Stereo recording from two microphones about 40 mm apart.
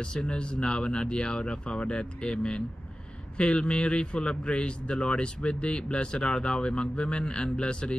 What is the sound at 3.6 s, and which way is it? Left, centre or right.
A man's voice, left.